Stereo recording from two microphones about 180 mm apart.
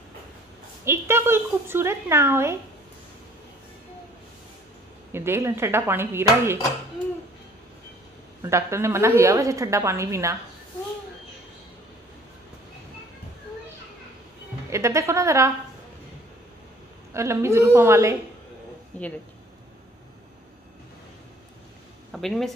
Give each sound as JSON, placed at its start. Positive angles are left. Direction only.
{"t": 0.8, "sound": "a woman's voice", "side_deg": -15}
{"t": 5.1, "sound": "a woman's voice", "side_deg": -15}
{"t": 8.4, "sound": "a woman's voice", "side_deg": -15}
{"t": 14.7, "sound": "a woman's voice", "side_deg": -15}
{"t": 17.1, "sound": "a woman's voice", "side_deg": -15}
{"t": 18.9, "sound": "speech", "side_deg": 10}
{"t": 22.1, "sound": "speech", "side_deg": 0}